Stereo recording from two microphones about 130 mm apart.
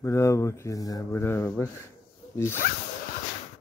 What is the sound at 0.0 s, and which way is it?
Speech, 25° left (ahead or behind).